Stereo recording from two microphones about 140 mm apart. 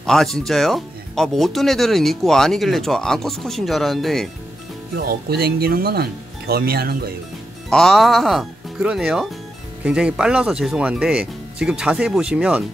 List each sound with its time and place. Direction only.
0.0 s speech: centre (ahead or behind)
4.9 s speech: 90° right
7.7 s speech: centre (ahead or behind)